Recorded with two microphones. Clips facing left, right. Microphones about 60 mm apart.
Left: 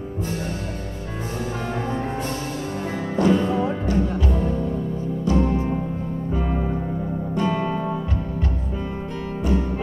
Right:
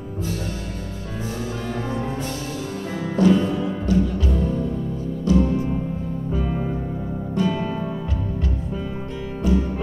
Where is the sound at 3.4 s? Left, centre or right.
Left.